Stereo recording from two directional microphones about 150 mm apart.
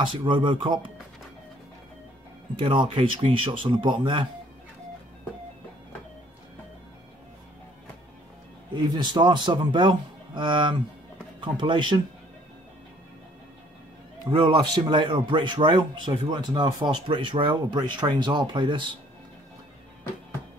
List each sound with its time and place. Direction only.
0.0 s speech: 35° right (ahead or behind)
2.5 s speech: 35° right (ahead or behind)
8.7 s speech: 30° right (ahead or behind)
14.2 s speech: 35° right (ahead or behind)